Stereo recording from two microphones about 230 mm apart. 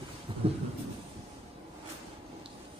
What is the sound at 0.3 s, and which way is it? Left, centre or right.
Thunder, right.